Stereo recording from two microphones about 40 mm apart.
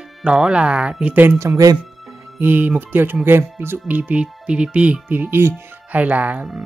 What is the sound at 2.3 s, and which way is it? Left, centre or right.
Speech, right.